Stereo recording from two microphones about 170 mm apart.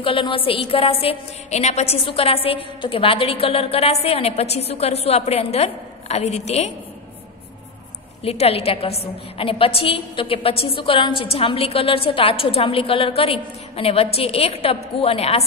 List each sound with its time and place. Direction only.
0.0 s a woman's voice: 30° left (ahead or behind)
8.2 s a woman's voice: 35° left (ahead or behind)